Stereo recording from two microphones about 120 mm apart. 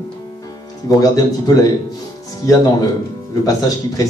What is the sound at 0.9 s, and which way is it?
Speech, 30° left (ahead or behind).